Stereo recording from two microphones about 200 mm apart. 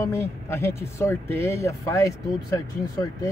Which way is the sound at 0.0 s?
15° left (ahead or behind).